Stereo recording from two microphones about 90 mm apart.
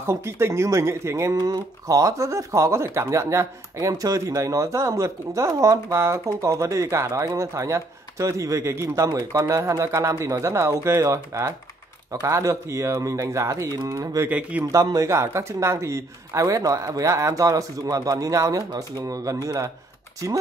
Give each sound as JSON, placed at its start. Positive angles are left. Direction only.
{"t": 0.0, "sound": "speech", "side_deg": -30}
{"t": 1.3, "sound": "speech", "side_deg": -45}
{"t": 14.3, "sound": "speech", "side_deg": -15}
{"t": 14.7, "sound": "speech", "side_deg": -40}